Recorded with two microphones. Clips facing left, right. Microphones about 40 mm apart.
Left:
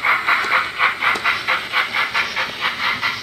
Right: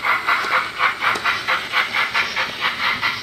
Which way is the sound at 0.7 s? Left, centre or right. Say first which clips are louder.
Left 1 dB; centre.